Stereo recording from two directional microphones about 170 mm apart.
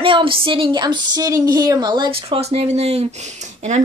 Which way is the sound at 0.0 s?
30° right (ahead or behind).